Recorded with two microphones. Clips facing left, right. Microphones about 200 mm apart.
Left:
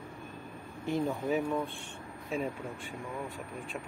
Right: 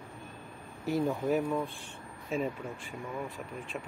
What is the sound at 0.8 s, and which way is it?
Speech, 5° right (ahead or behind).